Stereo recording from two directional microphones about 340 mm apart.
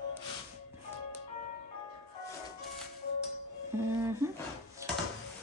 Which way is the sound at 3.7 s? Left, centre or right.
Centre.